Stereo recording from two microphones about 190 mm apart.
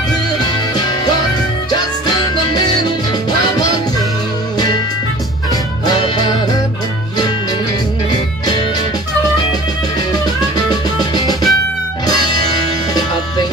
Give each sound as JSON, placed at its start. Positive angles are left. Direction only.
{"t": 0.7, "sound": "music", "side_deg": 20}
{"t": 5.5, "sound": "music", "side_deg": 20}
{"t": 8.1, "sound": "music", "side_deg": 20}